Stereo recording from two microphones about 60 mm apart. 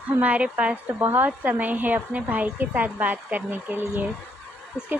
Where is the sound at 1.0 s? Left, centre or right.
Right.